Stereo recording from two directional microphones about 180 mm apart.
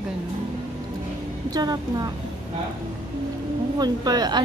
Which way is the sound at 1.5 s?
20° right (ahead or behind).